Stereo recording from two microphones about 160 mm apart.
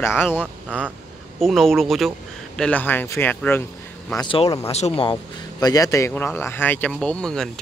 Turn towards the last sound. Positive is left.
turn(degrees=5)  # may be behind; listen again after turning